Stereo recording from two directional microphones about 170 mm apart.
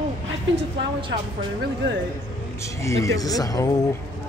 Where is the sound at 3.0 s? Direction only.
20° left (ahead or behind).